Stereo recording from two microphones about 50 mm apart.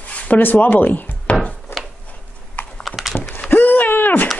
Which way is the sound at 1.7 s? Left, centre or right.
Left.